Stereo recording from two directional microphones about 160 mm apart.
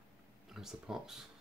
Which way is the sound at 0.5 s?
Centre (ahead or behind).